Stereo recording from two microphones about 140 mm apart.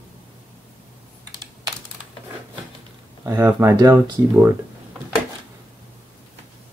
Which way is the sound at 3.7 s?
30° right (ahead or behind).